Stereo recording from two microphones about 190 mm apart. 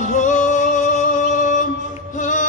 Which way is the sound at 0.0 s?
40° left (ahead or behind).